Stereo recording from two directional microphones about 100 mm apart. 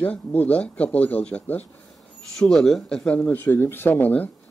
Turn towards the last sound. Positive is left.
turn(degrees=15)  # may be behind; listen again after turning